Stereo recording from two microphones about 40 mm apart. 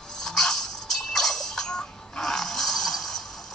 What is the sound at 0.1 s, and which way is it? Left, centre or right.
Music, centre.